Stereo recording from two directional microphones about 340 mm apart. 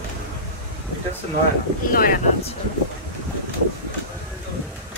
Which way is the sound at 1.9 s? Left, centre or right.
Left.